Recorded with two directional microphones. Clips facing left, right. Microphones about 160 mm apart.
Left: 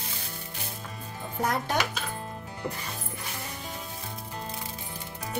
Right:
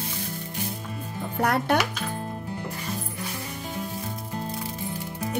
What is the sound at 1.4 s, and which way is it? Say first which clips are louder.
Speech: right 4 dB; 65° right (ahead or behind).